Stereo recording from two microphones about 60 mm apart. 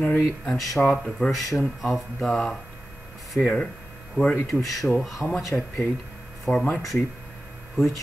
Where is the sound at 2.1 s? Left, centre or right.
Centre.